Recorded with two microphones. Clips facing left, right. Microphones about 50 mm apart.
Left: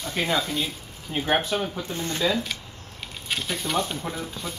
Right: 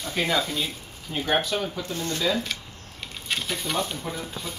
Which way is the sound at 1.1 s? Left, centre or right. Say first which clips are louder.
Left 1 dB; left.